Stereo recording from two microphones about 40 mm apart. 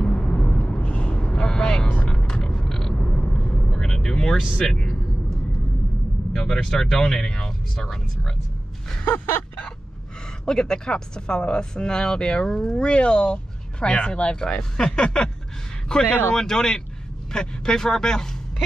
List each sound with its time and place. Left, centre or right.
0.0 s vehicle: left
1.3 s vehicle: centre
3.0 s vehicle: left
6.4 s speech: centre
7.7 s speech: centre
9.0 s a sound: left
10.4 s speech: centre
14.4 s speech: centre